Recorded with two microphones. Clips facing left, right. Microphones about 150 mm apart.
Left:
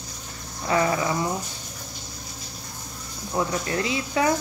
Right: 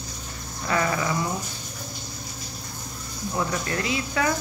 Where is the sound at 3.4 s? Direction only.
20° left (ahead or behind).